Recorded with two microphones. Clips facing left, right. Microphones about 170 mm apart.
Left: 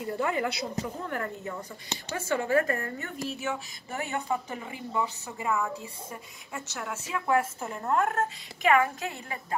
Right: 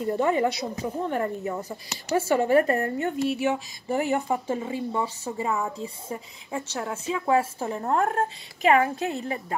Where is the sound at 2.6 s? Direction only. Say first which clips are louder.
Right 8 dB; 25° right (ahead or behind).